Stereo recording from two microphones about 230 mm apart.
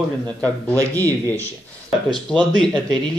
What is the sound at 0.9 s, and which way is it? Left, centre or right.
A man's voice, centre.